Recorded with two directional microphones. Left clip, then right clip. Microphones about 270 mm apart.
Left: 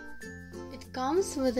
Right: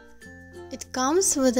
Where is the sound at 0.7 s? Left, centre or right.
Right.